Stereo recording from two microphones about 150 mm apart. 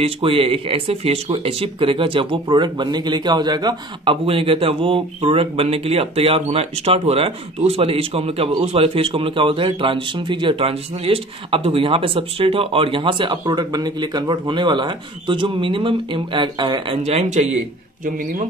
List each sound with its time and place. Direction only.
0.0 s speech: 40° right (ahead or behind)